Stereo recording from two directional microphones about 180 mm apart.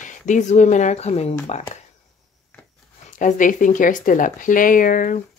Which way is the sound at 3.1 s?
45° left (ahead or behind).